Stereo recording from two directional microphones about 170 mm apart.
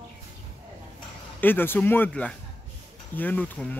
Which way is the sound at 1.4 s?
10° left (ahead or behind).